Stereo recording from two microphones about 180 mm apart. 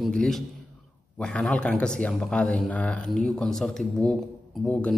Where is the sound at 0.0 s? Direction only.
5° left (ahead or behind).